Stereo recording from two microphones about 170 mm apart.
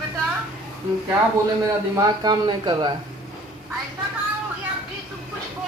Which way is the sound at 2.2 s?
25° right (ahead or behind).